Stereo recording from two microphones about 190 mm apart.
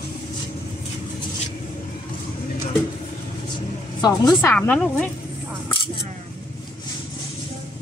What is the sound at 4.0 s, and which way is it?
Speech, 20° left (ahead or behind).